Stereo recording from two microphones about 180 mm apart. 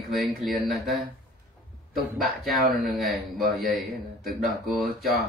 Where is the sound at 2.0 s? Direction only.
55° right (ahead or behind).